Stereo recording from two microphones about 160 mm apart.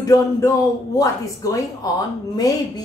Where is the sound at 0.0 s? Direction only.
20° left (ahead or behind).